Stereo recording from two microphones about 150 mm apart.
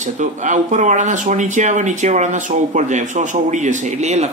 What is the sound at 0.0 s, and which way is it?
Speech, 55° right (ahead or behind).